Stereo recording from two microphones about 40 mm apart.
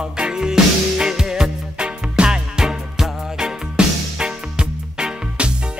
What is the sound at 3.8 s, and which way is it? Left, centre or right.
Music, right.